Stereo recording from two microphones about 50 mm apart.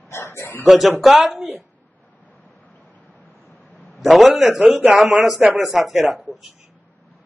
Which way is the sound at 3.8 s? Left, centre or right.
Centre.